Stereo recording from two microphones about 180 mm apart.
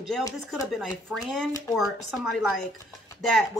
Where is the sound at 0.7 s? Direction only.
Centre (ahead or behind).